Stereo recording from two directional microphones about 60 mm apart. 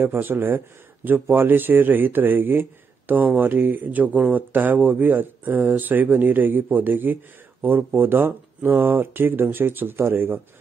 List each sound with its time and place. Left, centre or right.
0.0 s speech: right